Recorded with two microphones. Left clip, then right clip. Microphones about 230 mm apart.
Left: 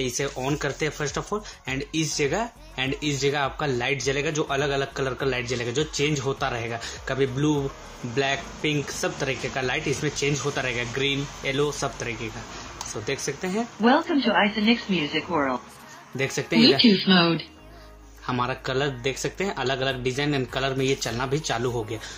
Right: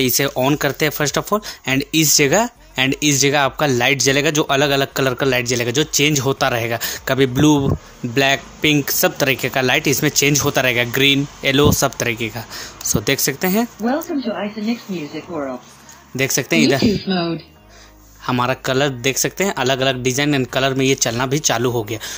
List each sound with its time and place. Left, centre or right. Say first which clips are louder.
0.0 s speech: right 10 dB; right
13.8 s speech: even; centre
16.2 s speech: right 7 dB; right
16.8 s speech: even; centre
18.2 s speech: right 8 dB; right